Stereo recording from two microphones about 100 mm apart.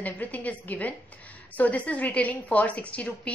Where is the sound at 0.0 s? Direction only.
15° left (ahead or behind).